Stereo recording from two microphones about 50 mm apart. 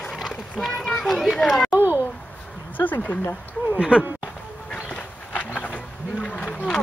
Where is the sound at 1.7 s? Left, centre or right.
Right.